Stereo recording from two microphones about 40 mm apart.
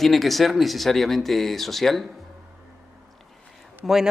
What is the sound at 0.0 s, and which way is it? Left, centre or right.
Speech, centre.